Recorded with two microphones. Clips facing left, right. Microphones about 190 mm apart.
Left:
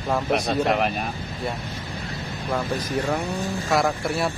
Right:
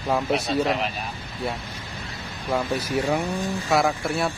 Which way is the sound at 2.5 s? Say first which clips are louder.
Right 1 dB; 10° right (ahead or behind).